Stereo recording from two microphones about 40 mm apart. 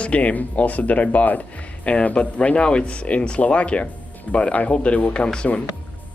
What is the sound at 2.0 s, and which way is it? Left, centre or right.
Speech, left.